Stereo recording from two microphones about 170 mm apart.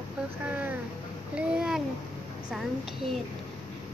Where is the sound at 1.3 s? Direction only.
5° right (ahead or behind).